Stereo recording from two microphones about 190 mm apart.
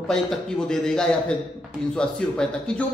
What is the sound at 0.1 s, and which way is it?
Speech, 5° left (ahead or behind).